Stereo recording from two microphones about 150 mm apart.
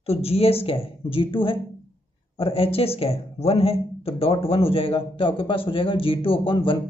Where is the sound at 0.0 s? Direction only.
40° left (ahead or behind).